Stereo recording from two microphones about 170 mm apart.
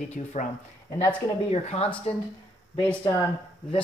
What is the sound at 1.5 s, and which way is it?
Speech, 35° left (ahead or behind).